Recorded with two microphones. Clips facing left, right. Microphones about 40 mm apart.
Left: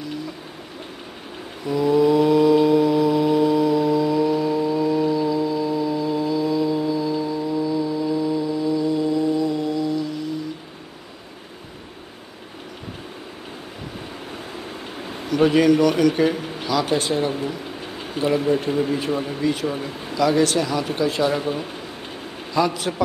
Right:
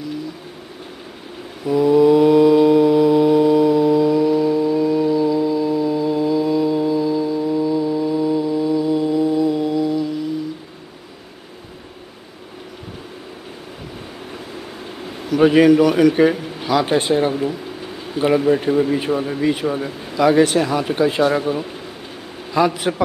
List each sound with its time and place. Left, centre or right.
1.7 s mantra: centre
15.2 s a man's voice: centre
18.7 s a man's voice: centre
22.8 s speech: centre